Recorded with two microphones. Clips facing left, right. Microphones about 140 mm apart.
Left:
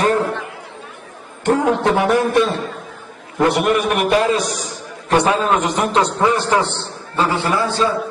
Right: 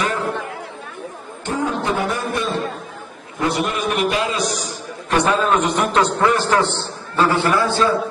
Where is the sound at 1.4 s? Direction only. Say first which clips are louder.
Left 6 dB; 75° left (ahead or behind).